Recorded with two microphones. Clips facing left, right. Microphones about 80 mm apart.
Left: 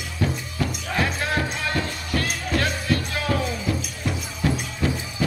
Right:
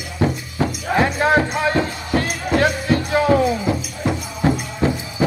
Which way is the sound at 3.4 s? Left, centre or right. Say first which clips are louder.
Right 7 dB; right.